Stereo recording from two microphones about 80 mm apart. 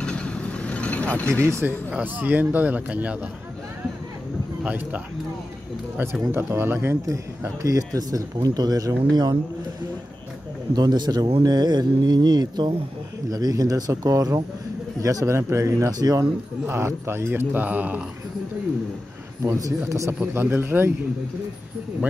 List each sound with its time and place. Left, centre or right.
0.0 s vehicle: centre
1.4 s speech: right
2.1 s speech: right
4.6 s speech: centre
6.3 s a man's voice: right
10.7 s speech: right
13.3 s a man's voice: right
15.9 s a man's voice: right
16.6 s speech: right
19.4 s speech: right
20.3 s speech: right